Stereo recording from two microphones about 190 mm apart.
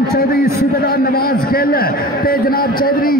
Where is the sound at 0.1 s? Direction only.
55° left (ahead or behind).